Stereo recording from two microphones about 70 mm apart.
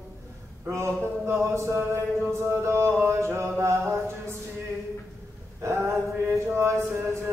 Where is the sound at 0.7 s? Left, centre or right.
Right.